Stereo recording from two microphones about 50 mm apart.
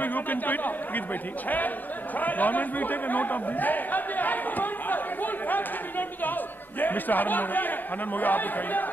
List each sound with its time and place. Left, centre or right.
0.0 s a man's voice: left
2.1 s a man's voice: left